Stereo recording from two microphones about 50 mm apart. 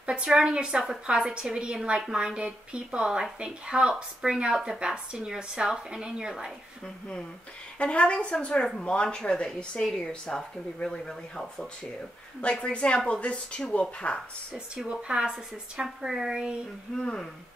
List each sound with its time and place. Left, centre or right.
0.0 s a woman's voice: centre
7.8 s speech: left
14.5 s a woman's voice: centre
16.9 s speech: centre